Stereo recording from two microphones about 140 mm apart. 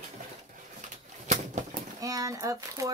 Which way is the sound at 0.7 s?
60° right (ahead or behind).